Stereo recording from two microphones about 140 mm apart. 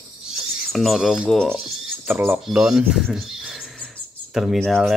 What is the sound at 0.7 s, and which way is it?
Speech, centre (ahead or behind).